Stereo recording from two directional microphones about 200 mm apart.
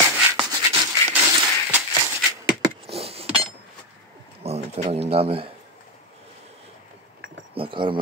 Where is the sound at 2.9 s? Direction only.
30° right (ahead or behind).